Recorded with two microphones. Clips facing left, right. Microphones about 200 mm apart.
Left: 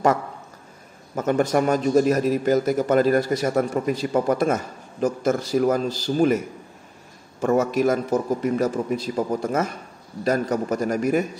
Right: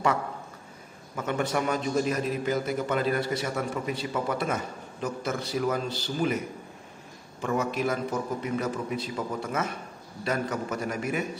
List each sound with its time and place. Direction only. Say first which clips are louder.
1.1 s a man's voice: left 8 dB; 40° left (ahead or behind)
7.4 s a man's voice: left 8 dB; 45° left (ahead or behind)